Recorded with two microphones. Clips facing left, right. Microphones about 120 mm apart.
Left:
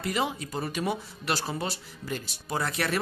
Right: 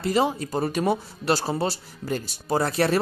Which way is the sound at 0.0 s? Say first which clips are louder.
Right 7 dB; 35° right (ahead or behind).